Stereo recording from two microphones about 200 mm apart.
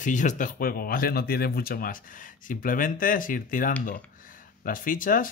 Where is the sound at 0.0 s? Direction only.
40° left (ahead or behind).